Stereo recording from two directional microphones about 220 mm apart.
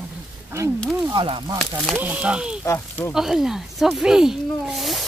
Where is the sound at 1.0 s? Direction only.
25° right (ahead or behind).